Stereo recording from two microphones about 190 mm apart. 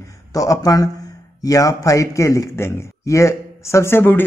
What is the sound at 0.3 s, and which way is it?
Speech, 15° left (ahead or behind).